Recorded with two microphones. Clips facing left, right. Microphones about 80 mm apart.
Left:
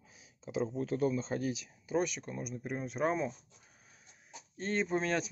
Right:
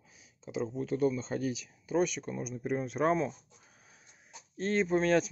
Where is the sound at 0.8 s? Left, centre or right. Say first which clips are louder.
Right 4 dB; left.